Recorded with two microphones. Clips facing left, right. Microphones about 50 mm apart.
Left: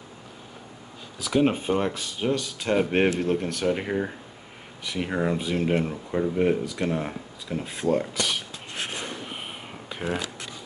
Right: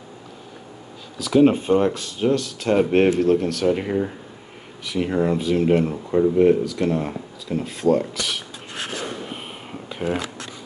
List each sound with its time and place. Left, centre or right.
1.1 s speech: centre
3.3 s speech: centre
6.4 s speech: centre
9.3 s a sound: centre